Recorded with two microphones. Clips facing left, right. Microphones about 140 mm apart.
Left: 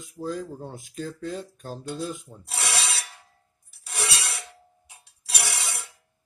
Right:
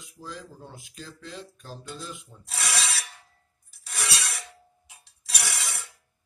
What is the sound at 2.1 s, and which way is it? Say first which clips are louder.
Filing: left 6 dB; 40° left (ahead or behind).